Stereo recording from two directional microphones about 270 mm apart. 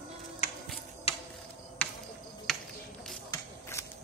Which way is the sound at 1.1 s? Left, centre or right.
Left.